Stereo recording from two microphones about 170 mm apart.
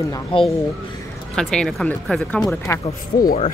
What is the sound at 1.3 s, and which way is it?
Speech, 5° left (ahead or behind).